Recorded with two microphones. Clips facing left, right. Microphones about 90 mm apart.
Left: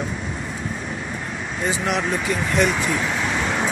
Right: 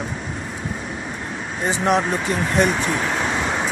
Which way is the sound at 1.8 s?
40° right (ahead or behind).